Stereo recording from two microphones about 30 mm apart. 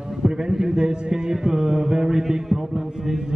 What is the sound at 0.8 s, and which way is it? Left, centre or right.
Mantra, right.